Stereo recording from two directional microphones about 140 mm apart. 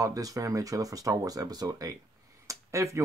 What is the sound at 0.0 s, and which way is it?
Speech, 25° right (ahead or behind).